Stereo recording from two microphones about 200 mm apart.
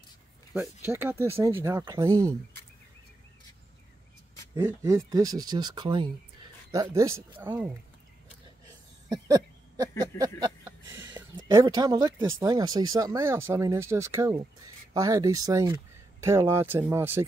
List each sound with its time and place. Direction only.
0.5 s speech: 5° right (ahead or behind)
4.6 s speech: 15° right (ahead or behind)
9.1 s a sound: 20° right (ahead or behind)
11.4 s speech: 20° right (ahead or behind)